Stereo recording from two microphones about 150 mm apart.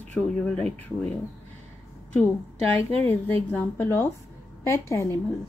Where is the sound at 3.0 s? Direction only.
15° left (ahead or behind).